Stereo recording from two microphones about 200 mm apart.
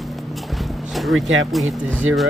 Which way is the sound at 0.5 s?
Centre (ahead or behind).